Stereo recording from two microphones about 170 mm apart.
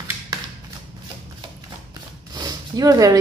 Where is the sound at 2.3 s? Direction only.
25° right (ahead or behind).